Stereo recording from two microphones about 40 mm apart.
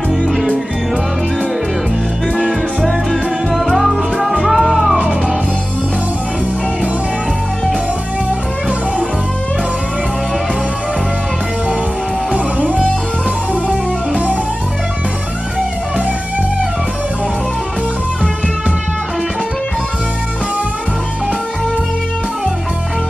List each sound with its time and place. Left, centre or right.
3.5 s music: centre
12.3 s guitar: right
14.1 s music: right